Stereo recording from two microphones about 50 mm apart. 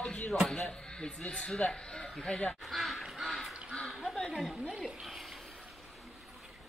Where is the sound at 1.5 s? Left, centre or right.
Centre.